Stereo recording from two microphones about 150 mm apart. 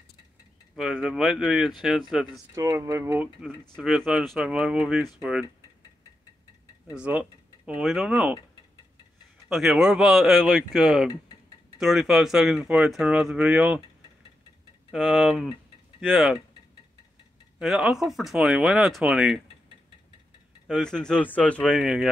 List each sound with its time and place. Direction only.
0.7 s speech: 5° right (ahead or behind)
2.5 s speech: 20° right (ahead or behind)
3.4 s speech: centre (ahead or behind)
6.9 s speech: 10° right (ahead or behind)
9.5 s speech: centre (ahead or behind)
14.9 s speech: centre (ahead or behind)
17.6 s speech: 5° right (ahead or behind)
20.6 s speech: 5° left (ahead or behind)
21.7 s speech: 5° right (ahead or behind)